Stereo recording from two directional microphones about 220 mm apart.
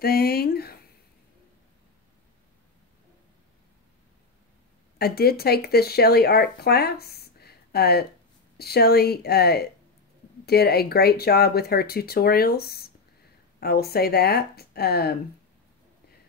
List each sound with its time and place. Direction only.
0.0 s speech: 45° left (ahead or behind)
4.9 s speech: 45° left (ahead or behind)